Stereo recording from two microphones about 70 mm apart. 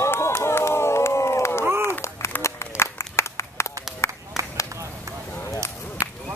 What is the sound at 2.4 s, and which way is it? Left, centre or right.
Run, left.